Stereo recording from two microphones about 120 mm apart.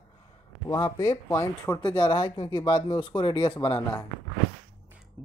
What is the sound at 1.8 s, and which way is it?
Speech, 40° left (ahead or behind).